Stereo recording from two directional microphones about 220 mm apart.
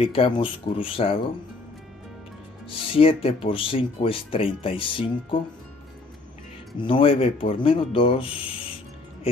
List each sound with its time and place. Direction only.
0.0 s speech: 25° left (ahead or behind)
2.9 s speech: 25° left (ahead or behind)
6.8 s speech: 25° left (ahead or behind)